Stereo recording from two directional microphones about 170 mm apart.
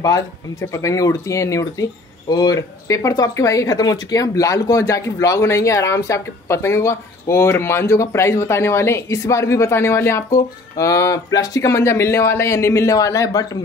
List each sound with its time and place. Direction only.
0.0 s speech: 20° left (ahead or behind)